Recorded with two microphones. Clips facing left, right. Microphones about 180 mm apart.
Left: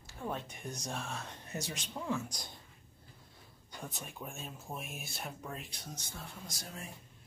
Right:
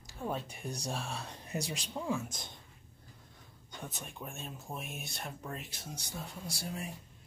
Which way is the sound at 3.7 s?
Centre (ahead or behind).